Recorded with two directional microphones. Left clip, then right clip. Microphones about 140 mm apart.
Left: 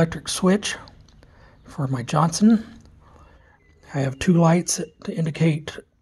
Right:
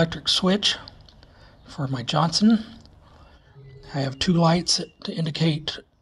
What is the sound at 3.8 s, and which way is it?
Speech, 45° left (ahead or behind).